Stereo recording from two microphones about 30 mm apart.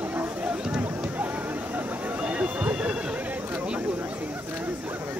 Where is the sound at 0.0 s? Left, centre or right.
Right.